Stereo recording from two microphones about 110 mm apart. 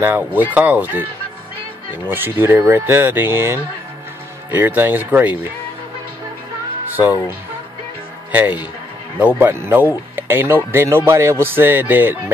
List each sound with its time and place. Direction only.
0.0 s speech: 20° right (ahead or behind)
2.0 s speech: 20° right (ahead or behind)
7.0 s speech: 15° right (ahead or behind)